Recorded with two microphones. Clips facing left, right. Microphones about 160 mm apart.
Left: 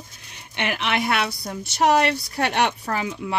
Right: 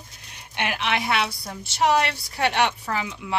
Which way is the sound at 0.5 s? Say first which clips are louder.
Left 1 dB; 55° left (ahead or behind).